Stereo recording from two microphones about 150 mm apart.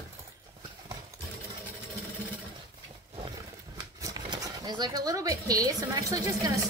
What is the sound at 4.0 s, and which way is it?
Speech, 25° right (ahead or behind).